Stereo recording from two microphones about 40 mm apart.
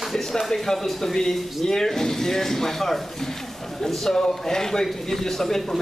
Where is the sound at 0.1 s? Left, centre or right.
Centre.